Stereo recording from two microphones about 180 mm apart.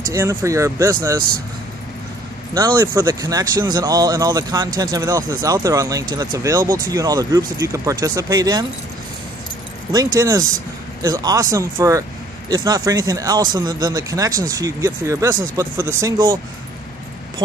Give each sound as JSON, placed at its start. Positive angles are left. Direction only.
{"t": 0.1, "sound": "speech", "side_deg": -15}
{"t": 2.5, "sound": "speech", "side_deg": -20}
{"t": 9.9, "sound": "speech", "side_deg": -20}